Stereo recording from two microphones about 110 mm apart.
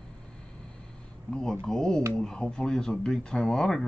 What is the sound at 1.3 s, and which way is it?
Speech, 5° left (ahead or behind).